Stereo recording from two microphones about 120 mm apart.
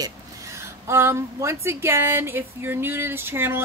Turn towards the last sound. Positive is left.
turn(degrees=-20)  # may be behind; listen again after turning